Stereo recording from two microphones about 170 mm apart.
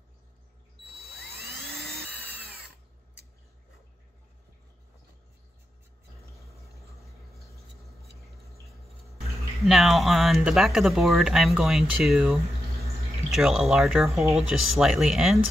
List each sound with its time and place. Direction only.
1.7 s a sound: centre (ahead or behind)
2.0 s drill: 70° right (ahead or behind)
9.7 s speech: centre (ahead or behind)